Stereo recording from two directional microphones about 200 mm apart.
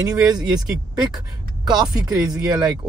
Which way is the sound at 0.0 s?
20° right (ahead or behind).